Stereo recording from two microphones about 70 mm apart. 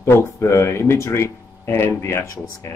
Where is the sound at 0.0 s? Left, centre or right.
Left.